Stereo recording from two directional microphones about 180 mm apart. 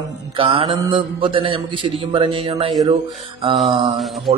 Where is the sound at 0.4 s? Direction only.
30° right (ahead or behind).